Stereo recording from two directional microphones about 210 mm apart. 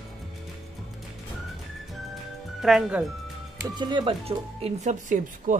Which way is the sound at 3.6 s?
20° right (ahead or behind).